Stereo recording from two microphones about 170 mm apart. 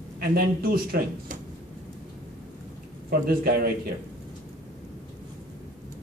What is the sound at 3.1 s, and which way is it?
Speech, 65° right (ahead or behind).